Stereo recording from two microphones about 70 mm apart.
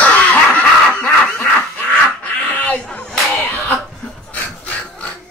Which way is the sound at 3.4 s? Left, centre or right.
Left.